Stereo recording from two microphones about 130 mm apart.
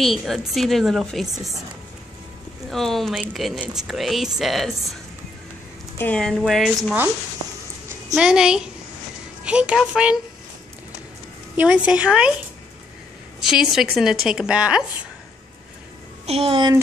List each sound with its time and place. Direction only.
0.0 s speech: centre (ahead or behind)
2.7 s speech: centre (ahead or behind)
5.9 s speech: 10° left (ahead or behind)
8.1 s a woman's voice: 5° right (ahead or behind)
11.5 s a woman's voice: 10° right (ahead or behind)
13.4 s speech: 5° right (ahead or behind)
16.3 s speech: 45° right (ahead or behind)